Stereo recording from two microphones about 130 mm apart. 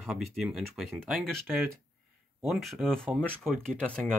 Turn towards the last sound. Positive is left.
turn(degrees=5)  # may be behind; listen again after turning